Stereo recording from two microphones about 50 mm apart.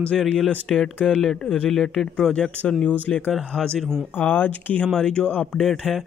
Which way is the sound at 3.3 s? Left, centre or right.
Centre.